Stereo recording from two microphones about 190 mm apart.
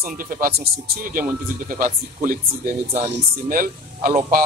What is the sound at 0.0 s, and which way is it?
Speech, 50° right (ahead or behind).